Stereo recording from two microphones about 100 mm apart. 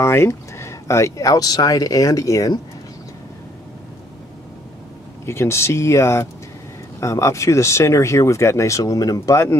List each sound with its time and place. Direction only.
0.0 s speech: 30° left (ahead or behind)
5.2 s speech: 25° left (ahead or behind)